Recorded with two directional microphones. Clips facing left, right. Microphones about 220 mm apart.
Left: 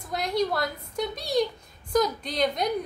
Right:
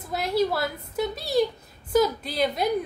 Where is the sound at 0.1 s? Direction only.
5° right (ahead or behind).